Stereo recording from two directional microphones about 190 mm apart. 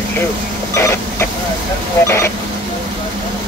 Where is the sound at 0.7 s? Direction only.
15° left (ahead or behind).